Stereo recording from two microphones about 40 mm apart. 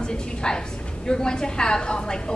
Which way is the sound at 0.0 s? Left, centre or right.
Left.